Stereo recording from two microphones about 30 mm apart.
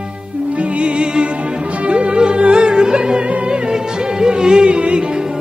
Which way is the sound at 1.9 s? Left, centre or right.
Right.